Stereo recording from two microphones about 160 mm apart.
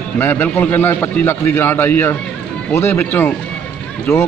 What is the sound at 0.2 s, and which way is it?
A man's voice, 10° left (ahead or behind).